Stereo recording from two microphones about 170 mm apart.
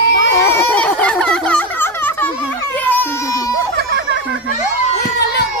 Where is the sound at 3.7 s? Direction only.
90° right.